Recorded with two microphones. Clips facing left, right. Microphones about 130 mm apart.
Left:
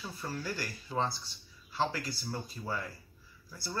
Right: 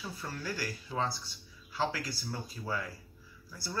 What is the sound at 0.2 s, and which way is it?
Speech, centre (ahead or behind).